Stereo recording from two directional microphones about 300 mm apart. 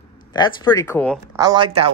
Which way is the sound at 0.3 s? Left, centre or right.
Centre.